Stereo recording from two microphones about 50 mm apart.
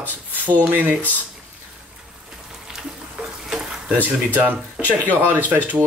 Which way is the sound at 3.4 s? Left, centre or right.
Centre.